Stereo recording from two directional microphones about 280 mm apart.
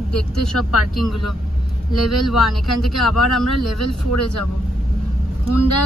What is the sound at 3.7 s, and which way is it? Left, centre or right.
Speech, left.